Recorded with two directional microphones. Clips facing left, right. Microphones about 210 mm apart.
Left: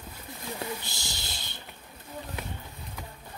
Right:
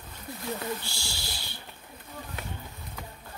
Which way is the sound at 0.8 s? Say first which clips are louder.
Right 1 dB; 20° left (ahead or behind).